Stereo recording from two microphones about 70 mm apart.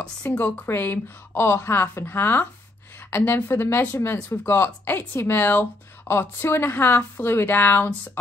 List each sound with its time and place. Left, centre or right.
0.0 s speech: centre
0.4 s speech: left